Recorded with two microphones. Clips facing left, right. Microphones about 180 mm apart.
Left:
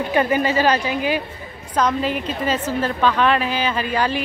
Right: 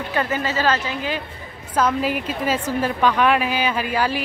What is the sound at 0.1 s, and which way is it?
A woman's voice, 15° left (ahead or behind).